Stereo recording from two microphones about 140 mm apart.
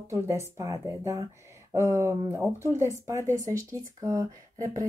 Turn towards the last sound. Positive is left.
turn(degrees=-25)  # may be behind; listen again after turning